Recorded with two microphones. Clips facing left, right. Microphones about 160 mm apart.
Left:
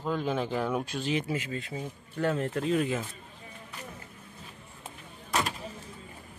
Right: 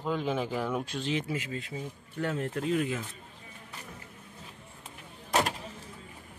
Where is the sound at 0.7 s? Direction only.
5° left (ahead or behind).